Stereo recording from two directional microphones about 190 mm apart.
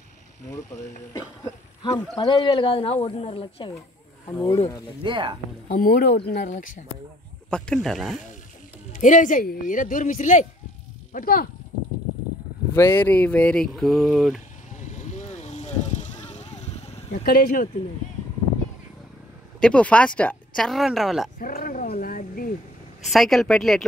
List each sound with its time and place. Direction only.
1.1 s speech: 20° left (ahead or behind)
5.0 s speech: 25° right (ahead or behind)
5.7 s speech: 50° left (ahead or behind)
7.4 s speech: 5° left (ahead or behind)
8.9 s speech: 40° left (ahead or behind)
12.7 s speech: 10° left (ahead or behind)
14.8 s vehicle: 40° left (ahead or behind)
17.3 s speech: 50° left (ahead or behind)
19.6 s speech: 5° left (ahead or behind)
21.4 s a sound: 45° left (ahead or behind)
23.0 s speech: centre (ahead or behind)